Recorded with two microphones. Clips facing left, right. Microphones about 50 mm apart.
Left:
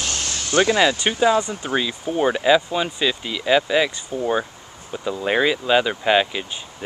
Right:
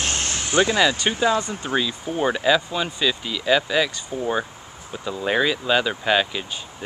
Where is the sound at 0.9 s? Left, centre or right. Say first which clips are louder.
Left 3 dB; centre.